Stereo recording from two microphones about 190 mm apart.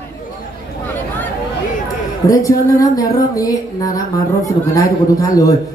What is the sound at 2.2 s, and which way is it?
Speech, 20° left (ahead or behind).